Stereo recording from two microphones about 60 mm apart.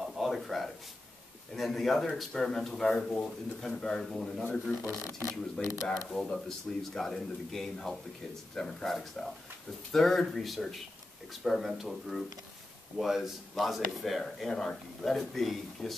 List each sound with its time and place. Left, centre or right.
0.0 s a sound: centre
1.5 s speech: centre
4.7 s speech: left
5.9 s speech: centre